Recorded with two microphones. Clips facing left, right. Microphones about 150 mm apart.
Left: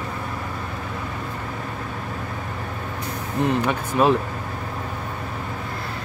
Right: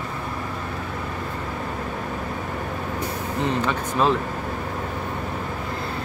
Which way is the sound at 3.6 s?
15° left (ahead or behind).